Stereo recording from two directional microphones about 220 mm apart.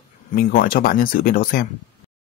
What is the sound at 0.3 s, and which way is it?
Speech, 45° left (ahead or behind).